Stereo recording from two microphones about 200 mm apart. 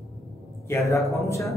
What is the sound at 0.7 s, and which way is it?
Speech, 15° left (ahead or behind).